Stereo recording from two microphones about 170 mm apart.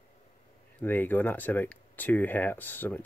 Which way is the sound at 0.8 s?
10° left (ahead or behind).